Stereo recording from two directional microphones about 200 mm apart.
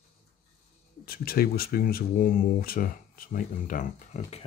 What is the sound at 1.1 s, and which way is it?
Speech, 50° left (ahead or behind).